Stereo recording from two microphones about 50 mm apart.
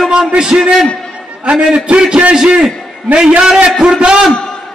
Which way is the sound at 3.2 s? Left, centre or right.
Centre.